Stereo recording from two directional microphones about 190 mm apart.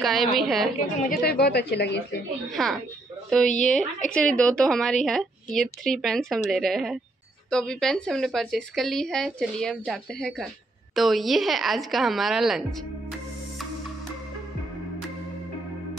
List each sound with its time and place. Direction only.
0.0 s a woman's voice: centre (ahead or behind)
1.2 s a woman's voice: 55° left (ahead or behind)
2.5 s a woman's voice: centre (ahead or behind)